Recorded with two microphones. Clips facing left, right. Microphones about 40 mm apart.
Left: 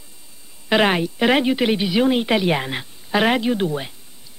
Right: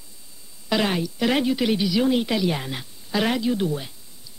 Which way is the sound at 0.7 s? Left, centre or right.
Left.